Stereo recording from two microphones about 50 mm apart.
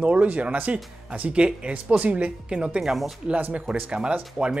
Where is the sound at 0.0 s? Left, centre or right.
Right.